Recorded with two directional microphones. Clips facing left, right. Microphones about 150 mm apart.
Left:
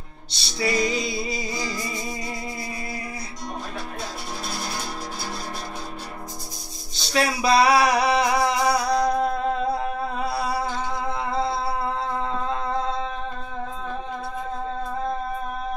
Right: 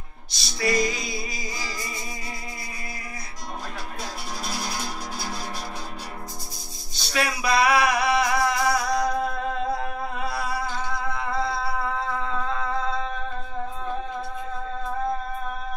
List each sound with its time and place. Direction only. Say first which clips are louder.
0.3 s music: even; 25° left (ahead or behind)
7.1 s music: left 4 dB; 30° left (ahead or behind)
10.1 s a sound: left 2 dB; 30° left (ahead or behind)